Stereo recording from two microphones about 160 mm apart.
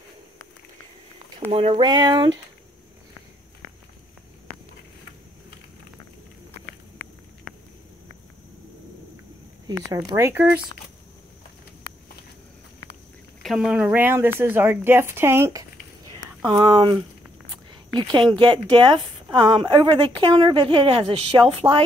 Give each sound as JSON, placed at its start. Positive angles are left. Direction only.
{"t": 1.5, "sound": "a woman's voice", "side_deg": -40}
{"t": 1.8, "sound": "speech", "side_deg": -25}
{"t": 9.7, "sound": "speech", "side_deg": -20}
{"t": 13.4, "sound": "speech", "side_deg": 0}
{"t": 16.4, "sound": "speech", "side_deg": -25}
{"t": 18.3, "sound": "a woman's voice", "side_deg": -30}